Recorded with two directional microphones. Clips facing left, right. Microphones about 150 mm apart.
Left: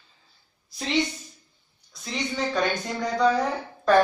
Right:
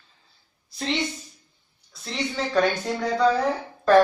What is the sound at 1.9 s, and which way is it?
Speech, centre (ahead or behind).